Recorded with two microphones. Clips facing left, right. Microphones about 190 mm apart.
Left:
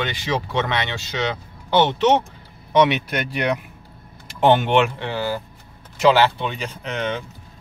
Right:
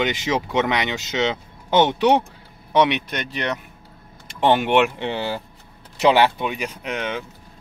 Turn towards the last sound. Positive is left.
turn(degrees=-10)  # may be behind; listen again after turning